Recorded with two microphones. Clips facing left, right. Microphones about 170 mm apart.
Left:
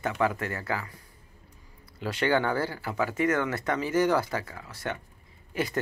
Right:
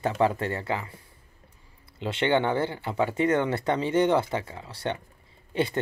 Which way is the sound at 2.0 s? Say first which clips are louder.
Right 2 dB; 25° right (ahead or behind).